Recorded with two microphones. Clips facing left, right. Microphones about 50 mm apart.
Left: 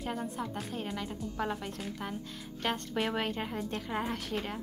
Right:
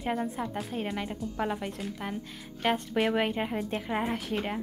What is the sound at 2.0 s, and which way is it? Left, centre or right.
Speech, centre.